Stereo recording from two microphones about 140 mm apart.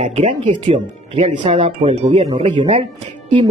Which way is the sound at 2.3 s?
35° right (ahead or behind).